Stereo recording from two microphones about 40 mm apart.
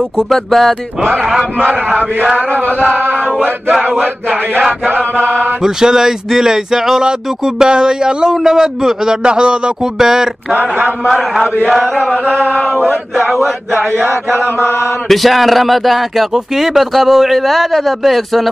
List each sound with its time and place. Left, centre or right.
0.3 s speech: centre
1.6 s chant: right
5.6 s speech: centre
9.9 s speech: centre
10.5 s chant: right
11.1 s speech: centre
13.2 s speech: centre
14.6 s mantra: left
15.0 s speech: centre